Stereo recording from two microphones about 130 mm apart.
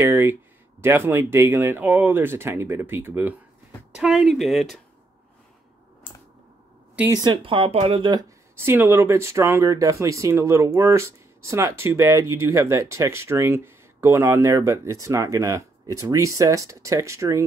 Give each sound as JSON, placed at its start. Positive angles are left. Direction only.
{"t": 0.0, "sound": "speech", "side_deg": -20}
{"t": 3.9, "sound": "speech", "side_deg": -5}
{"t": 7.2, "sound": "speech", "side_deg": -40}
{"t": 8.5, "sound": "speech", "side_deg": -15}